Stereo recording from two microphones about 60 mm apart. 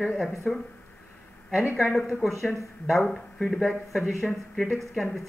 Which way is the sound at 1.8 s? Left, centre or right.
Centre.